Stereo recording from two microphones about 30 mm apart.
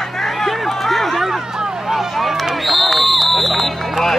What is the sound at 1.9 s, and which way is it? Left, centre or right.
Run, centre.